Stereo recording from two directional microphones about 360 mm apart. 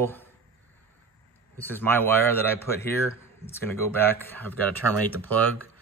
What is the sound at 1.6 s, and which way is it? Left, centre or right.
A man's voice, centre.